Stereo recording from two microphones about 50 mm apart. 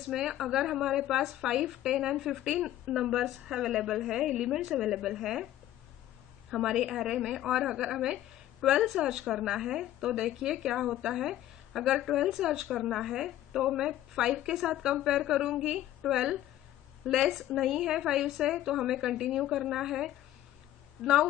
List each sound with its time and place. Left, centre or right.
0.1 s a woman's voice: centre
6.5 s a woman's voice: centre
14.7 s a woman's voice: centre